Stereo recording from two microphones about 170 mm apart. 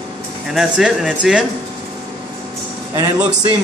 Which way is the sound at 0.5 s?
5° right (ahead or behind).